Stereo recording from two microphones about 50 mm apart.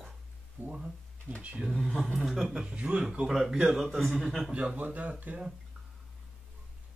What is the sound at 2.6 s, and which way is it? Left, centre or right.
Speech, right.